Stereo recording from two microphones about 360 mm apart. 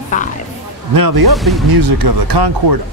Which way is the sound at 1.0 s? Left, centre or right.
Right.